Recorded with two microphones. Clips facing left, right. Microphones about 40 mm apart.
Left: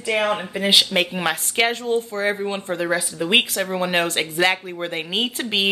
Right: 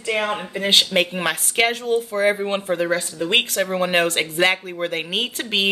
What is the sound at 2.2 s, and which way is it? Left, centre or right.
Speech, centre.